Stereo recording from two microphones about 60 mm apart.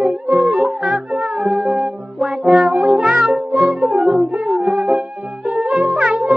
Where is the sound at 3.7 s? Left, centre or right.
Centre.